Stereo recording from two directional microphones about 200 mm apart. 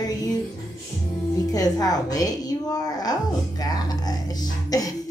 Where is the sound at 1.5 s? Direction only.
20° left (ahead or behind).